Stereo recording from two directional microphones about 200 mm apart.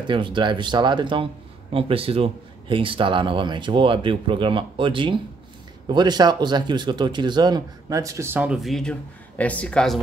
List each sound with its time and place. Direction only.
0.0 s speech: 25° right (ahead or behind); by 9.9 s 5° left (ahead or behind)